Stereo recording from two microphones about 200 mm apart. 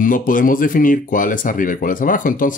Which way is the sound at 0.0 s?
40° left (ahead or behind).